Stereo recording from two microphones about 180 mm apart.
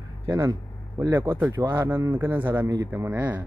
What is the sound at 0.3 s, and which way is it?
Speech, 15° right (ahead or behind).